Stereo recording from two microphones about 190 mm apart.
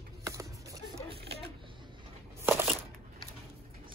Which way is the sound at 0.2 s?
15° right (ahead or behind).